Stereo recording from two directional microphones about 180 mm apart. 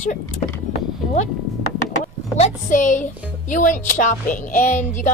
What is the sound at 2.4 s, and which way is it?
A woman's voice, 45° left (ahead or behind).